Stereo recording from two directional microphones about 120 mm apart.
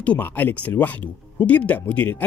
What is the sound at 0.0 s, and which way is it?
Speech, 15° left (ahead or behind).